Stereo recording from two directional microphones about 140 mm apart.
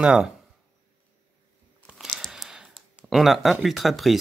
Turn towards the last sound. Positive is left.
turn(degrees=0)  # may be behind; listen again after turning